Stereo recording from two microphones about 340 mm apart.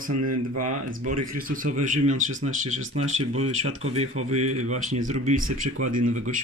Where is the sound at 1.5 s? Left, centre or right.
Right.